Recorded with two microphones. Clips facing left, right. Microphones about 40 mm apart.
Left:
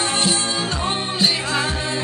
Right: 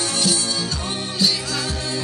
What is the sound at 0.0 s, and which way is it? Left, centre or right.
Music, left.